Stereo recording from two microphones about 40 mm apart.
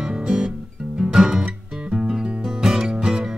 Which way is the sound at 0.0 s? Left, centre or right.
Centre.